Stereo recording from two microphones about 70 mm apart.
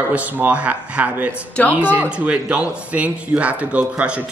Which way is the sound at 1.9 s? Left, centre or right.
Centre.